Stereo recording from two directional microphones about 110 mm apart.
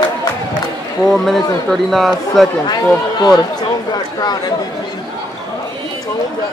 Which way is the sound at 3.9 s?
40° left (ahead or behind).